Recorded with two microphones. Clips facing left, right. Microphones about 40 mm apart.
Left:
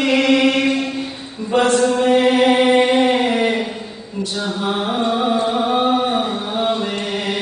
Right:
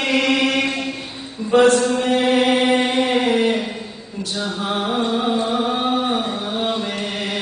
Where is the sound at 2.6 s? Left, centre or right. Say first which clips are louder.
Left 4 dB; left.